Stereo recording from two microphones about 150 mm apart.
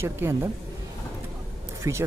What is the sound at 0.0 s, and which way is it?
Speech, 20° right (ahead or behind).